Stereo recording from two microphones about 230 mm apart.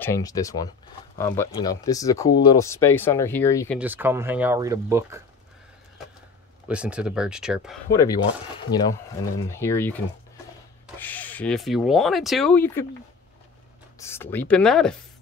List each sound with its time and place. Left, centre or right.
0.0 s speech: centre
3.7 s speech: centre
6.7 s speech: centre
7.9 s speech: centre
8.7 s speech: left
9.4 s speech: centre
11.0 s speech: centre
13.9 s speech: centre